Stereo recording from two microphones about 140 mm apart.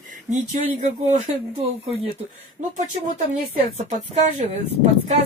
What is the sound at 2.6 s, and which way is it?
Speech, 55° right (ahead or behind).